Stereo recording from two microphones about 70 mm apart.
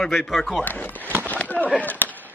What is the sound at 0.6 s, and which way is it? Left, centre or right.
Speech, left.